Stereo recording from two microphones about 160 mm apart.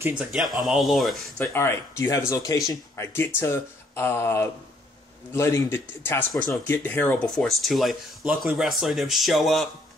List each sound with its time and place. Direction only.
0.2 s speech: centre (ahead or behind)
1.4 s speech: 15° left (ahead or behind); by 9.7 s centre (ahead or behind)